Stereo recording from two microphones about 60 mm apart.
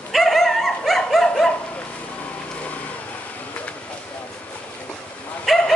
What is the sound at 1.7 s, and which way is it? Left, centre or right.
Vehicle, left.